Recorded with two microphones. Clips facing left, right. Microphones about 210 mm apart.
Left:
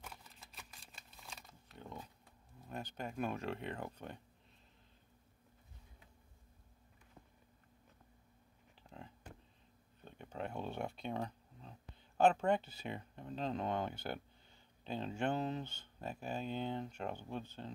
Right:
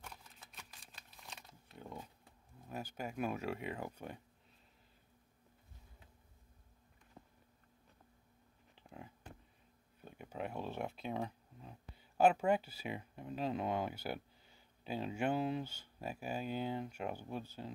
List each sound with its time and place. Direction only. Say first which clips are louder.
0.0 s shuffling cards: even; centre (ahead or behind)
2.7 s speech: right 1 dB; 5° right (ahead or behind)
8.7 s a sound: right 1 dB; 10° right (ahead or behind)
12.2 s speech: right 1 dB; 10° right (ahead or behind)